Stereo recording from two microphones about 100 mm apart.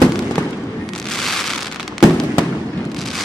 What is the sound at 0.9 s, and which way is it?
Fireworks, 5° left (ahead or behind).